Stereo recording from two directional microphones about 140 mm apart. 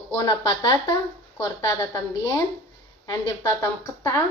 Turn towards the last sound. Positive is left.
turn(degrees=20)  # may be behind; listen again after turning